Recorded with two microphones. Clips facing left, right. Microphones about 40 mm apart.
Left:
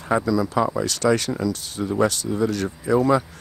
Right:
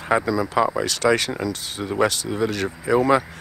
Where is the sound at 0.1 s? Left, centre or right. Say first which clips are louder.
Even; right.